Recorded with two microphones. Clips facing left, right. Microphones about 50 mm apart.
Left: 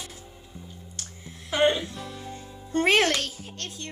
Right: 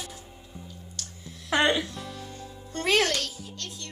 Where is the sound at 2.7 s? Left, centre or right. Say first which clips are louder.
Left 3 dB; left.